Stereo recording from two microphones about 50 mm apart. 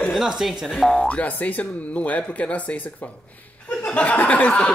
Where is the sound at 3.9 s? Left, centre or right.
Left.